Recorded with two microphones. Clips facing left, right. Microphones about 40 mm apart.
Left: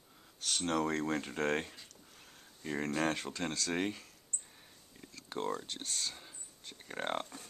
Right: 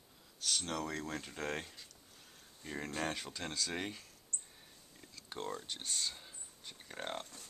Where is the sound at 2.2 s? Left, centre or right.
Centre.